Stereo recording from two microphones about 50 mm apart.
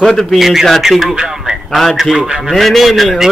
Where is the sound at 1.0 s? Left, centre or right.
Centre.